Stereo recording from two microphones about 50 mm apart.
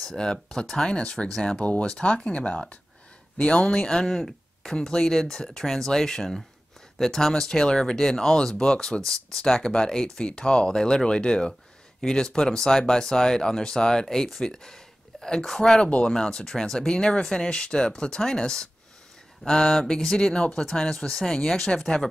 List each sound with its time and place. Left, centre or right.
0.2 s speech: centre
15.8 s speech: left